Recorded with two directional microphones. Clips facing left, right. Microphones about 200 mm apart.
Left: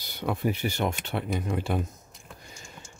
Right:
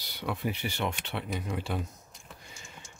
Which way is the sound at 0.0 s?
45° left (ahead or behind).